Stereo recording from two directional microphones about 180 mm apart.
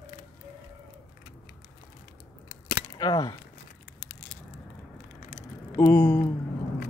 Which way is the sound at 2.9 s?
25° left (ahead or behind).